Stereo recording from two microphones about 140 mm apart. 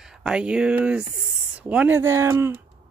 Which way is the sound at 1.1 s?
10° right (ahead or behind).